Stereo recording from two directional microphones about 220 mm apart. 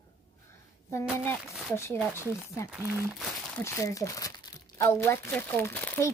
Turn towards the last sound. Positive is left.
turn(degrees=10)  # may be behind; listen again after turning